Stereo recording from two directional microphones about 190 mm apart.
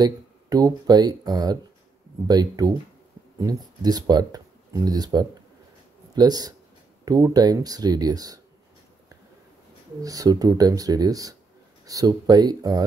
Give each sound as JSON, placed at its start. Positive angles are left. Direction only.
{"t": 0.0, "sound": "speech", "side_deg": -20}
{"t": 10.0, "sound": "speech", "side_deg": -20}